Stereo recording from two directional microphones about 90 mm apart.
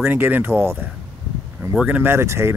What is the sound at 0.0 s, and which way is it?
Speech, 20° right (ahead or behind).